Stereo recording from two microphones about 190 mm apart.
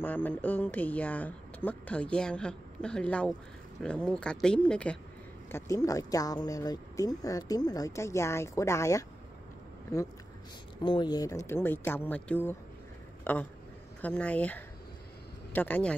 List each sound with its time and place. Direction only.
0.0 s speech: 10° left (ahead or behind)
5.5 s speech: 15° left (ahead or behind)